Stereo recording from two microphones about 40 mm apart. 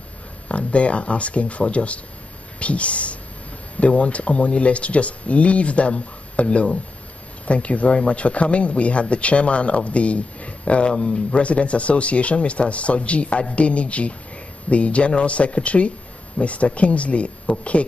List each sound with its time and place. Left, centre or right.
0.5 s speech: left